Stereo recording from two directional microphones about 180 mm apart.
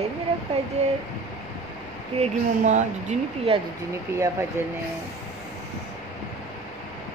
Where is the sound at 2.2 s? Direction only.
40° right (ahead or behind).